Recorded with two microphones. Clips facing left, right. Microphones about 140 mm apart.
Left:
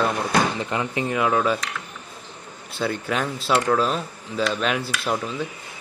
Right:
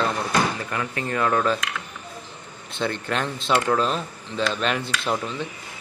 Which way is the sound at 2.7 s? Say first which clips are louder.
Left 1 dB; 5° left (ahead or behind).